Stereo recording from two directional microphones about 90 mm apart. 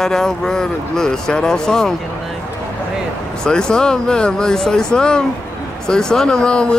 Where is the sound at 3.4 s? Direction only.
10° left (ahead or behind).